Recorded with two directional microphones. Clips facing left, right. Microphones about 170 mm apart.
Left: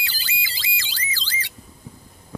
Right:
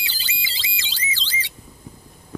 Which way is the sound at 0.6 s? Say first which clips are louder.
Even; 25° right (ahead or behind).